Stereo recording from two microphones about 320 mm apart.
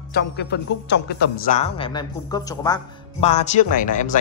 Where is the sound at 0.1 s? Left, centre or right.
Left.